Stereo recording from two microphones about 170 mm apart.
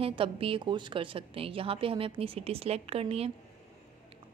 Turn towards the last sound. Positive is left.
turn(degrees=-35)  # may be behind; listen again after turning